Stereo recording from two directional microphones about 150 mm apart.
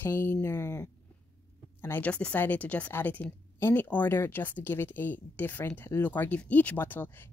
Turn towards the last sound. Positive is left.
turn(degrees=15)  # may be behind; listen again after turning